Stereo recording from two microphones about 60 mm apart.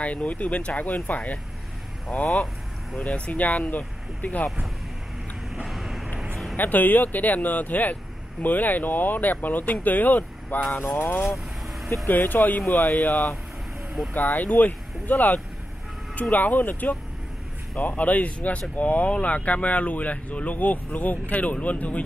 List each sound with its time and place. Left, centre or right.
0.0 s speech: left
5.5 s vehicle: centre
6.5 s speech: left
11.2 s vehicle: centre
12.1 s speech: left